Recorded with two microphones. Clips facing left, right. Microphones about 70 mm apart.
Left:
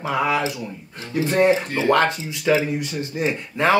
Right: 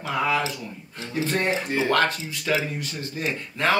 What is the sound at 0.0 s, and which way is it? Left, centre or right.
Speech, centre.